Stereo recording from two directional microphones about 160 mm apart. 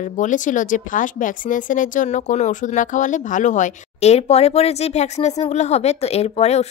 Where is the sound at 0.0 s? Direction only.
50° left (ahead or behind).